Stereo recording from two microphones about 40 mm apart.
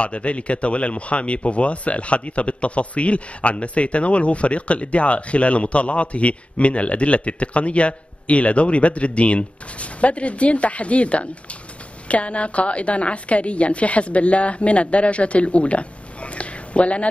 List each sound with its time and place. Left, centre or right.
0.0 s speech: left